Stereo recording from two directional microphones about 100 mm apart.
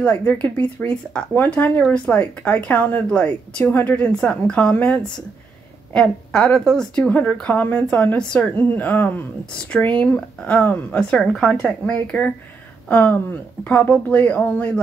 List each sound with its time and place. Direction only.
0.0 s speech: 15° left (ahead or behind)